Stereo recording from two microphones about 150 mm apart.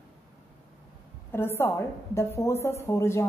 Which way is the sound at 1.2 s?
15° left (ahead or behind).